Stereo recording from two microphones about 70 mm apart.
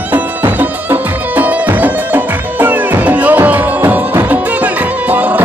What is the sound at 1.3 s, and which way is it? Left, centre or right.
Music, right.